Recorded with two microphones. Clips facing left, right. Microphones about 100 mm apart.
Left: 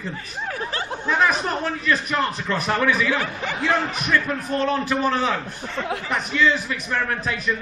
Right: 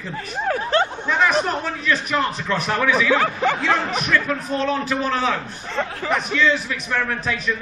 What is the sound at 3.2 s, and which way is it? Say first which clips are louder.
Speech: right 6 dB; 60° right (ahead or behind).